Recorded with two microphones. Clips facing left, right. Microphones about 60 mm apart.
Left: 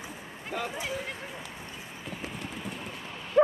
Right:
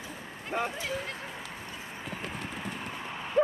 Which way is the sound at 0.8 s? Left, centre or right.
Centre.